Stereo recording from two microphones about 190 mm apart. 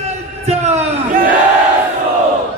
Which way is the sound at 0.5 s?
35° right (ahead or behind).